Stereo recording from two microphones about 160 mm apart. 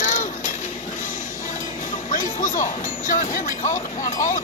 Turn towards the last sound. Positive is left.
turn(degrees=55)  # may be behind; listen again after turning